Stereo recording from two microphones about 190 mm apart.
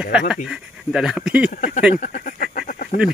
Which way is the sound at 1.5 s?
45° left (ahead or behind).